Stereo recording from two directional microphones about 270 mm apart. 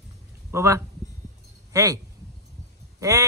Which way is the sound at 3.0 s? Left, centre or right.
Centre.